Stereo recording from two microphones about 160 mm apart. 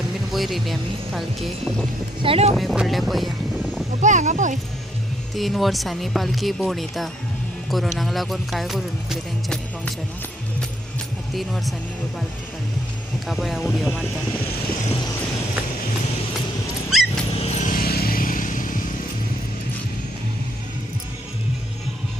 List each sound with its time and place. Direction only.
0.3 s speech: centre (ahead or behind)
2.2 s speech: 40° right (ahead or behind)
2.5 s speech: centre (ahead or behind)
4.0 s speech: 50° right (ahead or behind)
5.3 s speech: centre (ahead or behind)
11.3 s speech: centre (ahead or behind)
13.3 s speech: centre (ahead or behind)
16.9 s dog: centre (ahead or behind)
17.4 s vehicle: 45° left (ahead or behind)
17.7 s vehicle: 70° left (ahead or behind)